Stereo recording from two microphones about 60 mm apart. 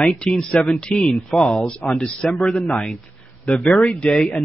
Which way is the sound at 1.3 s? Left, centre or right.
Centre.